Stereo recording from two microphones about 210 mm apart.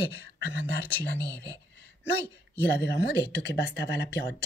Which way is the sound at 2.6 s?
50° left (ahead or behind).